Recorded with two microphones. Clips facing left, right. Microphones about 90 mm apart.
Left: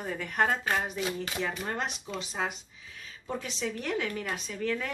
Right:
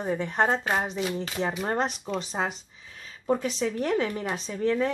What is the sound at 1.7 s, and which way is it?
Speech, 40° right (ahead or behind).